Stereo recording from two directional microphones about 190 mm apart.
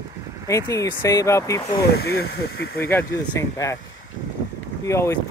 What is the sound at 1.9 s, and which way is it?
Speech, 55° left (ahead or behind).